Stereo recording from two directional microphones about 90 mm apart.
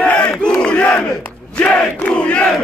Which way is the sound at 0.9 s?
15° left (ahead or behind).